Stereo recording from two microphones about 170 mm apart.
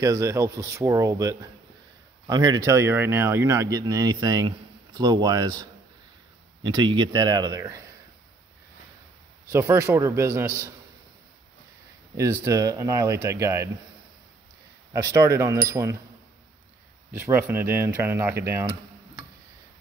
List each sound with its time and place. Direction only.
0.0 s speech: 20° right (ahead or behind)
9.5 s speech: 15° right (ahead or behind)
12.2 s speech: 15° right (ahead or behind)
14.9 s speech: 20° right (ahead or behind)
17.1 s speech: 15° right (ahead or behind)